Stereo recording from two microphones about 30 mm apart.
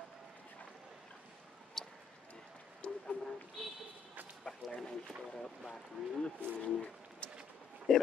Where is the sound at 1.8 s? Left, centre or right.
Centre.